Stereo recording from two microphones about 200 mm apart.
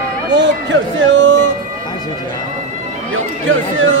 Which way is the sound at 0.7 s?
70° right (ahead or behind).